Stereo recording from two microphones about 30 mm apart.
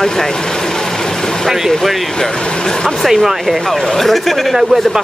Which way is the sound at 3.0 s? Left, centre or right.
Centre.